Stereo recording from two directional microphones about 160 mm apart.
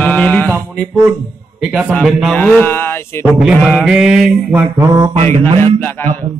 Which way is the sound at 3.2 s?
Centre (ahead or behind).